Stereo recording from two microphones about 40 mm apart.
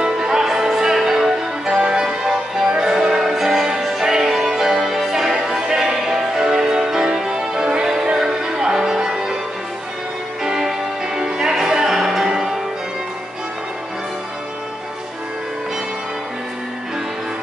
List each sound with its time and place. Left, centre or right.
0.0 s music: centre
10.4 s music: centre